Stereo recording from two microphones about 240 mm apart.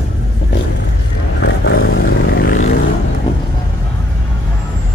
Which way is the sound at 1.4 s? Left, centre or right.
Left.